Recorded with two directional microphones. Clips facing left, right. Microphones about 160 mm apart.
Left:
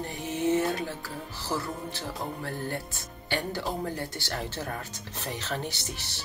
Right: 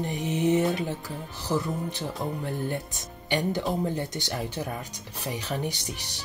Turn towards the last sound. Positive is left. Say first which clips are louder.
# right 2 dB
turn(degrees=-15)  # may be behind; listen again after turning